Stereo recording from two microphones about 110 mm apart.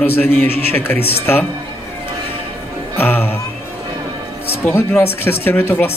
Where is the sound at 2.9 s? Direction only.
20° left (ahead or behind).